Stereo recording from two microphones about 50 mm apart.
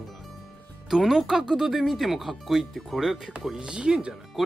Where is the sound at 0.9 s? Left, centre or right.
Centre.